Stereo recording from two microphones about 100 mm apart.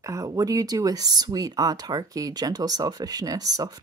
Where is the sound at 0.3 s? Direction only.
35° right (ahead or behind).